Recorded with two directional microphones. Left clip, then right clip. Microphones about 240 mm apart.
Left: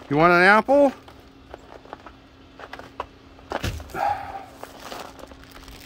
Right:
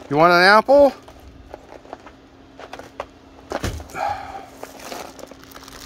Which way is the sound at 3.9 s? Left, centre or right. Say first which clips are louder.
Left 1 dB; left.